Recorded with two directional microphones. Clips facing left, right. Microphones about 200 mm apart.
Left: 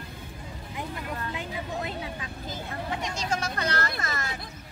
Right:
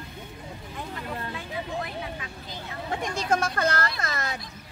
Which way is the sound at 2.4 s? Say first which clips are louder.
Left 3 dB; 45° left (ahead or behind).